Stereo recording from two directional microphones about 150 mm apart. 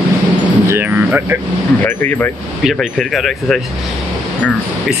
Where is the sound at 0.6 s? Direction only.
15° right (ahead or behind).